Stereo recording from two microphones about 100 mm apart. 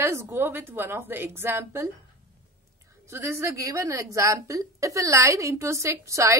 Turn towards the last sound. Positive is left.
turn(degrees=-30)  # may be behind; listen again after turning